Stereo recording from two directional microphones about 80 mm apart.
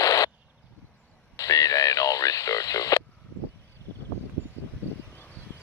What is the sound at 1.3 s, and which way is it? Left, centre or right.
Radio, left.